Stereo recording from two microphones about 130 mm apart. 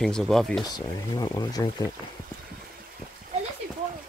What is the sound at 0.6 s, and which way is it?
Speech, 30° left (ahead or behind).